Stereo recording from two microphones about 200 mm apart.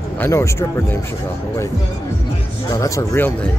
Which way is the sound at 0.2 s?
15° left (ahead or behind).